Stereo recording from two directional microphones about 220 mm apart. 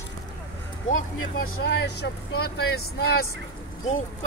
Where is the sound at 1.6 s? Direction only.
50° left (ahead or behind).